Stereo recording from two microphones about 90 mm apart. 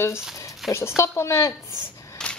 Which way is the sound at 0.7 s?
30° left (ahead or behind).